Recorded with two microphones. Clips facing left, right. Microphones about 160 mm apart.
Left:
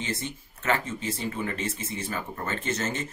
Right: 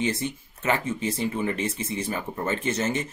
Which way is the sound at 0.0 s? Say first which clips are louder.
Right 6 dB; 15° right (ahead or behind).